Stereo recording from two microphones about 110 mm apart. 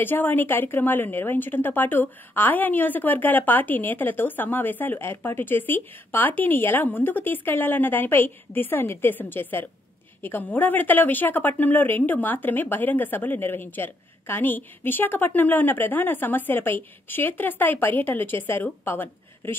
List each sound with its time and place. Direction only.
0.0 s a woman's voice: 20° left (ahead or behind)